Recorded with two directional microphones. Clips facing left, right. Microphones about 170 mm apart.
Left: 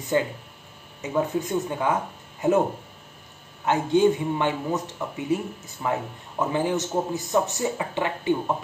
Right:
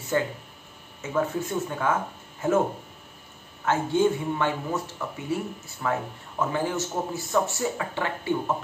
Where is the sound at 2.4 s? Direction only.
20° left (ahead or behind).